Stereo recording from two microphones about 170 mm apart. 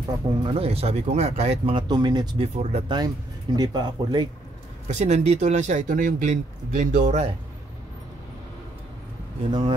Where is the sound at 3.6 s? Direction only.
25° right (ahead or behind).